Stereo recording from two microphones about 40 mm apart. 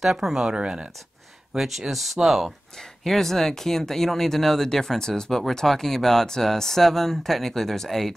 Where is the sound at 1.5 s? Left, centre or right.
Centre.